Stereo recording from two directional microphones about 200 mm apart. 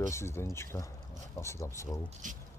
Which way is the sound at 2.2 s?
40° right (ahead or behind).